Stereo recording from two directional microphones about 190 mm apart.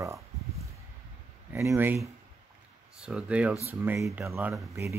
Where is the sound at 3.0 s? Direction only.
5° right (ahead or behind).